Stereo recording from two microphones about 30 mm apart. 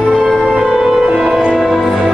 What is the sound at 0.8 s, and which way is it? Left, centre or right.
Music, centre.